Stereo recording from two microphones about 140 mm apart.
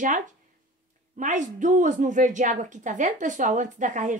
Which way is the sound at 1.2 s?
65° right (ahead or behind).